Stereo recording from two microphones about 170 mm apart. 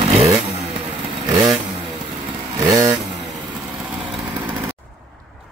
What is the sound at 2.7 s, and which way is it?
Vehicle, 20° right (ahead or behind).